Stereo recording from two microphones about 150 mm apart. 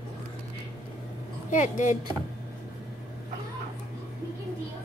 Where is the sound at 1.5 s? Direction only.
60° left (ahead or behind).